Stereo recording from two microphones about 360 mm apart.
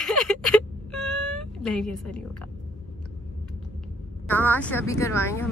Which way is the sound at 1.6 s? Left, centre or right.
Centre.